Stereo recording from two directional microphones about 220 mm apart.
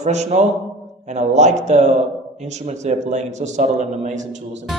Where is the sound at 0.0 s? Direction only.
30° right (ahead or behind).